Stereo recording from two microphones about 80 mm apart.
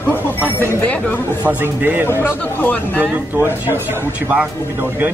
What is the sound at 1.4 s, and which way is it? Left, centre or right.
Speech, right.